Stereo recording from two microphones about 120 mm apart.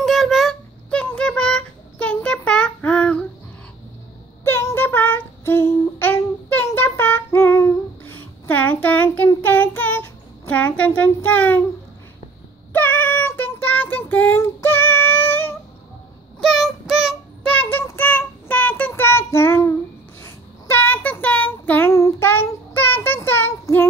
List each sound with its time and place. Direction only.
0.0 s a sound: centre (ahead or behind)
4.5 s child singing: 20° left (ahead or behind)
12.7 s child singing: 15° left (ahead or behind)
16.3 s child singing: centre (ahead or behind)
17.4 s child singing: 10° left (ahead or behind)